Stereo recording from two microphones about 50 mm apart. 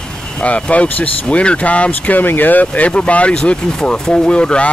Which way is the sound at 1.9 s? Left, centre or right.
Left.